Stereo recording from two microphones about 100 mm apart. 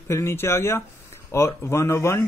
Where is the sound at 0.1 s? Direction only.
30° left (ahead or behind).